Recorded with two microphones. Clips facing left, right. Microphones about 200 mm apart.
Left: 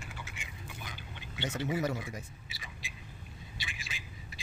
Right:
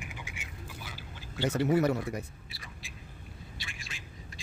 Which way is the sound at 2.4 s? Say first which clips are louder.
Even; centre (ahead or behind).